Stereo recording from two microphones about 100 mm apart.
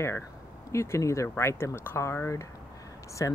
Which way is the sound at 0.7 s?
30° left (ahead or behind).